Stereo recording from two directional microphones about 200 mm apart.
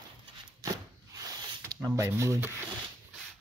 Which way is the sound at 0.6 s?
20° right (ahead or behind).